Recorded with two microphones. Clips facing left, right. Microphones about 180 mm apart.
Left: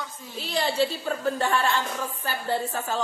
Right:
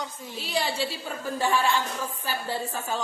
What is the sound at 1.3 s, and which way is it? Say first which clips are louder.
A woman's voice: even; 10° right (ahead or behind).